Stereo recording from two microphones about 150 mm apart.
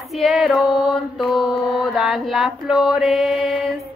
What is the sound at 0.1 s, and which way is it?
Speech, centre (ahead or behind).